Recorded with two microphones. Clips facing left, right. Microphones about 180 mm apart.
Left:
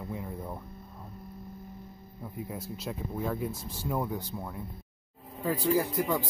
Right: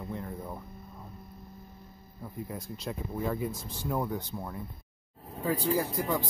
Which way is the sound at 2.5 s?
5° left (ahead or behind).